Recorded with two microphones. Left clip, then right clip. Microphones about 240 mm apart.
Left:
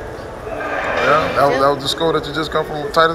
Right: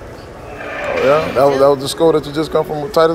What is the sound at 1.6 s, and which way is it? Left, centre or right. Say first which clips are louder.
A man's voice: right 4 dB; right.